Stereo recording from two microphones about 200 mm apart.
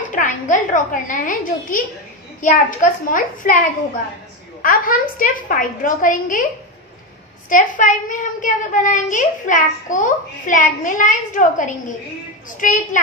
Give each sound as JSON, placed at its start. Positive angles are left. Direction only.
{"t": 0.1, "sound": "a child's voice", "side_deg": 40}
{"t": 4.6, "sound": "a woman's voice", "side_deg": 45}
{"t": 7.4, "sound": "a child's voice", "side_deg": 40}